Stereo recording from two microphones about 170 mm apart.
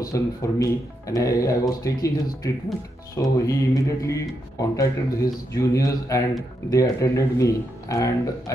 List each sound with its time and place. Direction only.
0.0 s speech: 20° left (ahead or behind)